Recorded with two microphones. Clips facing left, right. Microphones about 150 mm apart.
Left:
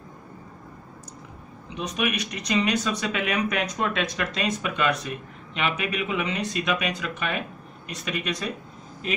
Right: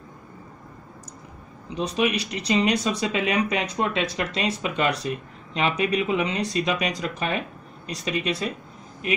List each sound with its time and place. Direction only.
1.8 s speech: 30° right (ahead or behind)